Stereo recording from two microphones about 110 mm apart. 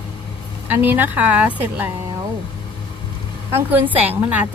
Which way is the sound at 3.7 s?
15° right (ahead or behind).